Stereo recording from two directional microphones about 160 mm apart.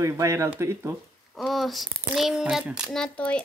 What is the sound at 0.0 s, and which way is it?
Speech, 20° right (ahead or behind).